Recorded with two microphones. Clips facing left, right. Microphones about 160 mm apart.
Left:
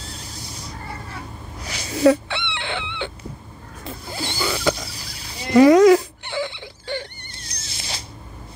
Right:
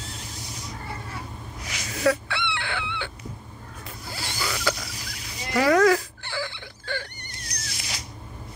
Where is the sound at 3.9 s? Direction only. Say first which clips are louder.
Left 7 dB; 25° left (ahead or behind).